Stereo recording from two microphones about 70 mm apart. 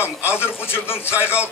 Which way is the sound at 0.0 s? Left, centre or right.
Left.